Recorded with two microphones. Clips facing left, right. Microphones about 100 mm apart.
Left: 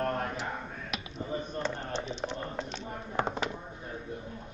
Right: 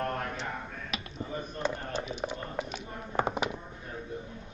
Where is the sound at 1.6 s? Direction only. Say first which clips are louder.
Right 1 dB; 10° right (ahead or behind).